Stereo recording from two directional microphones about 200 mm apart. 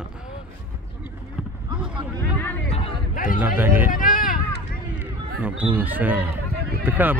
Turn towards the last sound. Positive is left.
turn(degrees=-10)  # may be behind; listen again after turning